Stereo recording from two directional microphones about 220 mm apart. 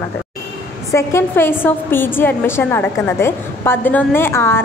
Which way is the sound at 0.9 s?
10° left (ahead or behind).